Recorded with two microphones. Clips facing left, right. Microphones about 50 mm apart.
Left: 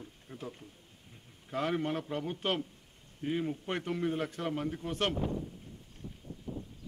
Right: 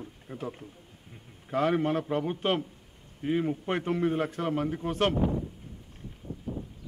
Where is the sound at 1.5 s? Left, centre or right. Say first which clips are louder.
Right 6 dB; centre.